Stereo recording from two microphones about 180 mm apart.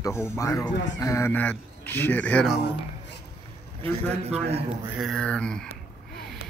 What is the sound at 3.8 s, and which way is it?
Speech, 35° right (ahead or behind).